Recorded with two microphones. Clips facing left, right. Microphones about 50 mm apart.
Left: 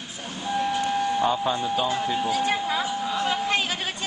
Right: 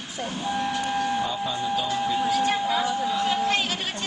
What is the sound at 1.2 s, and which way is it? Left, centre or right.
Speech, left.